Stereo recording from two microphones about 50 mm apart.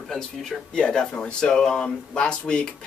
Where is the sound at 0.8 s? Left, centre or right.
Left.